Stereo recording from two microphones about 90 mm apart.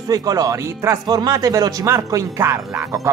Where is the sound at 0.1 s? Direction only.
45° right (ahead or behind).